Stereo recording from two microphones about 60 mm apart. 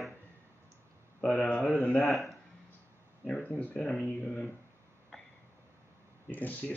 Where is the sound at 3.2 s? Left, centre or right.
Centre.